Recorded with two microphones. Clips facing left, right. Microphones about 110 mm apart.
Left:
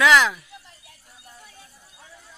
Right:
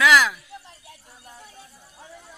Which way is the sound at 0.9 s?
20° right (ahead or behind).